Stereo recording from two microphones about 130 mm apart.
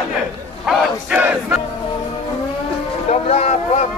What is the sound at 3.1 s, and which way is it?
Speech, 55° left (ahead or behind).